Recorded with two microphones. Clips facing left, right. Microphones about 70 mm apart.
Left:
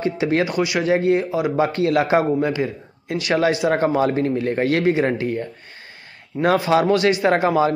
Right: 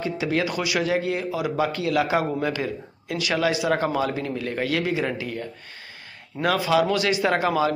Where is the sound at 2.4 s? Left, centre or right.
Left.